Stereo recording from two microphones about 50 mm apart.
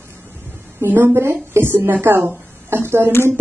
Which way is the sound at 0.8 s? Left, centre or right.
Right.